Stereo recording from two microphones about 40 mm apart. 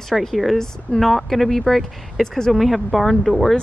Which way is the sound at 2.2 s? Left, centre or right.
Centre.